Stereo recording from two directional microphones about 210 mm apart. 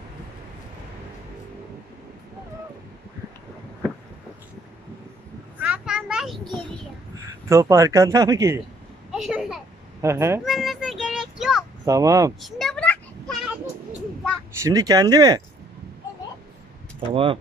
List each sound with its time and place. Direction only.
5.6 s a sound: 5° right (ahead or behind)
7.4 s speech: 15° right (ahead or behind)
9.1 s a sound: centre (ahead or behind)
10.0 s speech: 15° right (ahead or behind)
10.4 s child singing: centre (ahead or behind)
11.8 s speech: 15° right (ahead or behind)
12.4 s a sound: centre (ahead or behind)
14.6 s speech: 15° right (ahead or behind)
17.1 s speech: 25° right (ahead or behind)